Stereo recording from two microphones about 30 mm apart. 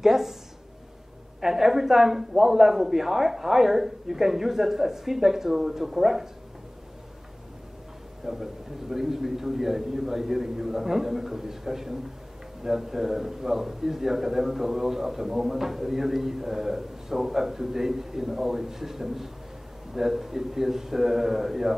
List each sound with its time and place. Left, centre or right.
0.0 s a sound: centre
1.4 s a man's voice: centre
8.2 s a man's voice: centre